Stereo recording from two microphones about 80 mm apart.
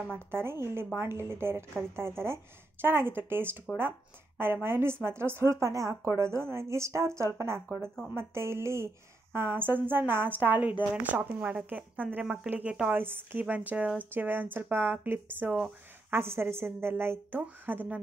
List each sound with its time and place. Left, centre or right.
0.3 s a woman's voice: right
7.8 s speech: centre
8.2 s a woman's voice: right
17.4 s a woman's voice: centre